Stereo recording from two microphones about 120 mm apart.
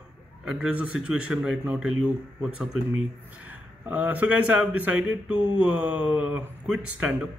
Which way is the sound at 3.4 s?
15° right (ahead or behind).